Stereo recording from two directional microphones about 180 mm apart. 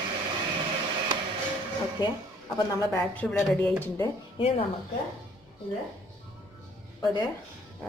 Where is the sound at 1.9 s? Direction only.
20° left (ahead or behind).